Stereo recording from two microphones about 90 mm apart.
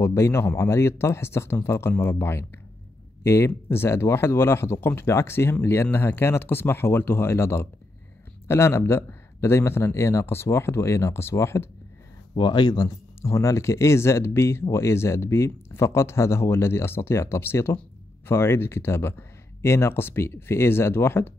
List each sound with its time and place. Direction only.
0.0 s speech: 30° left (ahead or behind)
12.4 s speech: 50° left (ahead or behind)
13.2 s speech: 35° left (ahead or behind)